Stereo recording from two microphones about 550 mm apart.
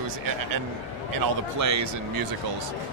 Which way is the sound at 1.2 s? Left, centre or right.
Right.